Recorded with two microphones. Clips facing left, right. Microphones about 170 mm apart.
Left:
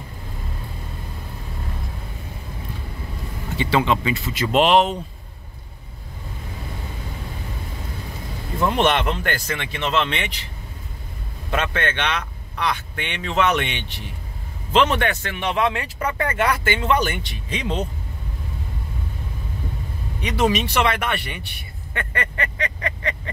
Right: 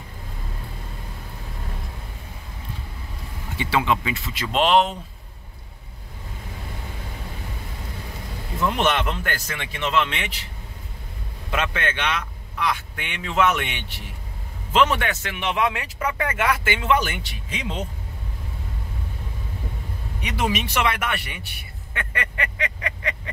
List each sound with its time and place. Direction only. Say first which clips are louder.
3.5 s speech: left 2 dB; 5° right (ahead or behind)
8.8 s speech: left 3 dB; 5° right (ahead or behind)
11.5 s speech: left 2 dB; 10° right (ahead or behind)
15.3 s speech: even; 40° left (ahead or behind)
16.6 s speech: left 1 dB; 5° right (ahead or behind)
20.2 s speech: left 5 dB; 10° right (ahead or behind)
22.3 s vehicle: left 2 dB; 10° right (ahead or behind)